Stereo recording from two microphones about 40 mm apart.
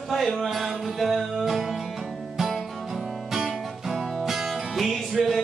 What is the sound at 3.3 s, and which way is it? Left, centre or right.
Music, centre.